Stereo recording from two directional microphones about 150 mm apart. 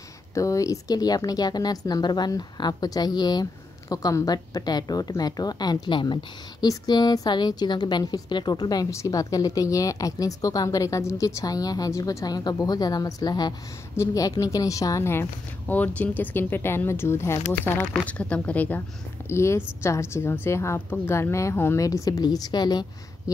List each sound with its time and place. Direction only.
0.3 s a woman's voice: 20° left (ahead or behind)